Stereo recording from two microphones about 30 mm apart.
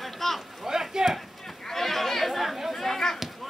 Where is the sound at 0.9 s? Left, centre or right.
Centre.